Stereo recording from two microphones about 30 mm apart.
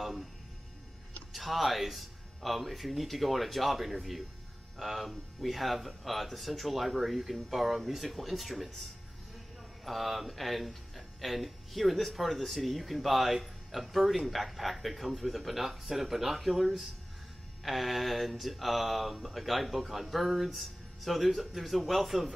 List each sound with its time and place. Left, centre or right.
0.0 s music: centre
1.3 s speech: centre
9.8 s speech: centre